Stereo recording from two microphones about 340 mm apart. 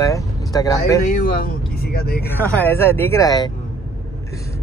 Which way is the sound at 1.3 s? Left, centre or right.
Left.